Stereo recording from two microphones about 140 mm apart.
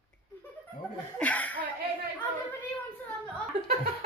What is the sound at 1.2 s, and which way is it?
Speech, 10° left (ahead or behind).